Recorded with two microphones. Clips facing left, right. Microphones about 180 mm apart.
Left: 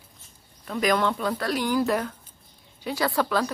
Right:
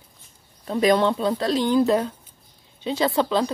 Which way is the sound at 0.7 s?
30° right (ahead or behind).